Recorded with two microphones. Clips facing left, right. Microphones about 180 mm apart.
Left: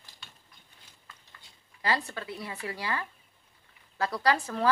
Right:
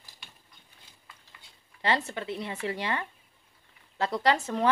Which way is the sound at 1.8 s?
25° right (ahead or behind).